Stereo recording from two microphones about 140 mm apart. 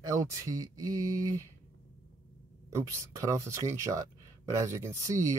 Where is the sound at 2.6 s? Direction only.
20° right (ahead or behind).